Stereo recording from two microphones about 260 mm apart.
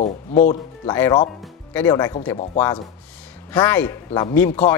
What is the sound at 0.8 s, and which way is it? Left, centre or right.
Speech, centre.